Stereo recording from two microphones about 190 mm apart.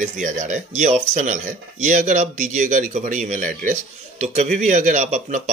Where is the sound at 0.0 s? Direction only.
40° right (ahead or behind).